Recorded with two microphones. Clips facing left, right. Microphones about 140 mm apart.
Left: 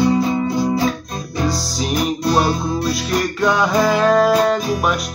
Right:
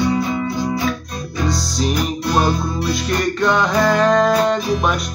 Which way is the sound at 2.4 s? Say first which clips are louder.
Left 1 dB; 5° left (ahead or behind).